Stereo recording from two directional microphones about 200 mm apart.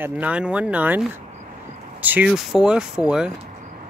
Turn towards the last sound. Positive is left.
turn(degrees=-5)  # may be behind; listen again after turning